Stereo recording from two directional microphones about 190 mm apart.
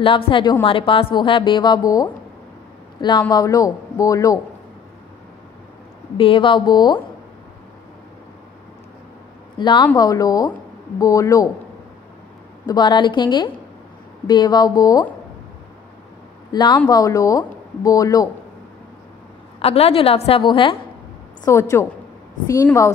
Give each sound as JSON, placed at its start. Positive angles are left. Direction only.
{"t": 0.0, "sound": "a woman's voice", "side_deg": 25}
{"t": 3.0, "sound": "speech", "side_deg": 25}
{"t": 6.1, "sound": "a woman's voice", "side_deg": 30}
{"t": 9.6, "sound": "a woman's voice", "side_deg": 25}
{"t": 12.6, "sound": "a woman's voice", "side_deg": 20}
{"t": 16.5, "sound": "a woman's voice", "side_deg": 25}
{"t": 19.6, "sound": "a woman's voice", "side_deg": 30}
{"t": 21.5, "sound": "speech", "side_deg": 15}